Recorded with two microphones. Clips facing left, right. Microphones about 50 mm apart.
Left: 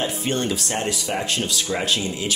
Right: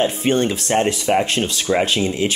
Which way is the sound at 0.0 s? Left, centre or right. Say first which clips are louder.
Right 6 dB; right.